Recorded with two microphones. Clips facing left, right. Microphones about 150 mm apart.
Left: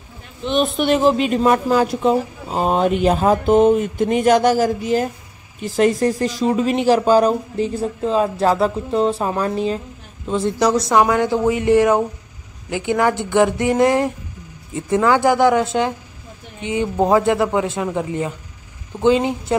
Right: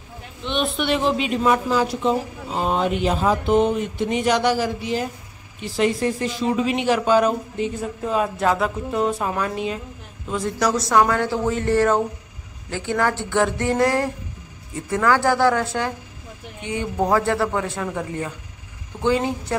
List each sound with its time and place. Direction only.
0.5 s a woman's voice: 40° left (ahead or behind); by 19.3 s 20° left (ahead or behind)